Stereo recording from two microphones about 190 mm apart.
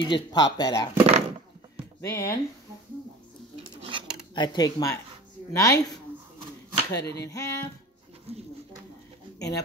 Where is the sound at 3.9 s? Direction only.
25° right (ahead or behind).